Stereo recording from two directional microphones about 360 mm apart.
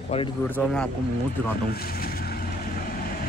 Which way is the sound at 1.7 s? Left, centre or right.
Left.